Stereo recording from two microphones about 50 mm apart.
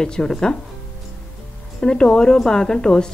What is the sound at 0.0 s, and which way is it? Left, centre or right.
Speech, centre.